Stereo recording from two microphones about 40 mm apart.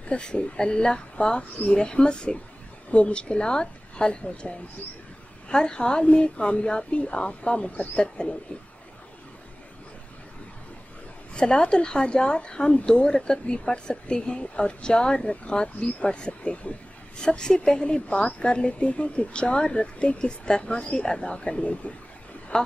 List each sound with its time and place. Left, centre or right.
0.0 s a woman's voice: left
11.3 s a woman's voice: left
22.5 s speech: centre